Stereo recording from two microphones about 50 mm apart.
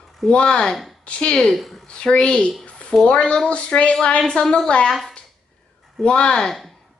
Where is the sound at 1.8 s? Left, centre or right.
Centre.